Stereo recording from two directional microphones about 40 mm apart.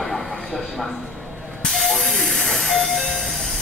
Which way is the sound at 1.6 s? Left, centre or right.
Centre.